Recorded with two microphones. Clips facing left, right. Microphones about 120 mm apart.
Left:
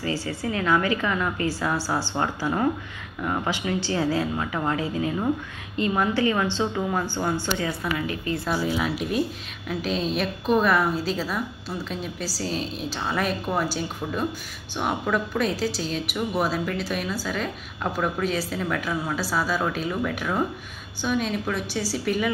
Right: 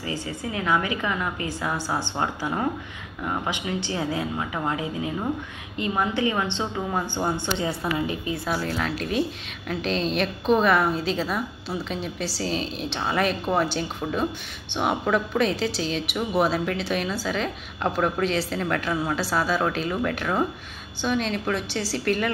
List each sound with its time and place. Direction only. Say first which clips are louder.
0.0 s a woman's voice: left 3 dB; 20° right (ahead or behind)
8.3 s a woman's voice: left 2 dB; centre (ahead or behind)